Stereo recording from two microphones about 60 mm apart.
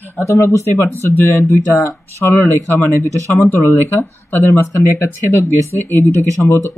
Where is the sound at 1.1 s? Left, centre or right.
Left.